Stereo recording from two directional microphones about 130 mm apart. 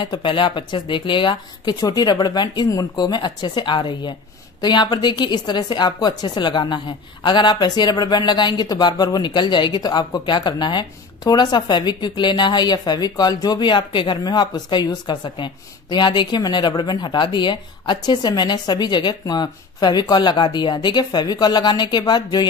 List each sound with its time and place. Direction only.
0.0 s speech: 40° left (ahead or behind)